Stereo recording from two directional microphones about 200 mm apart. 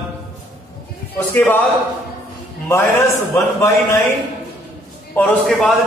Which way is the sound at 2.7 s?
15° left (ahead or behind).